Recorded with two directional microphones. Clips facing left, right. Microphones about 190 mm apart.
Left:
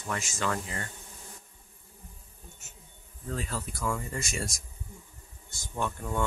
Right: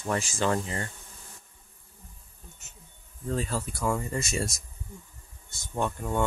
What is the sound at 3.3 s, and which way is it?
Speech, 30° right (ahead or behind).